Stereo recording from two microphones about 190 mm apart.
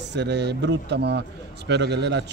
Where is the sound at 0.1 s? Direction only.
65° right (ahead or behind).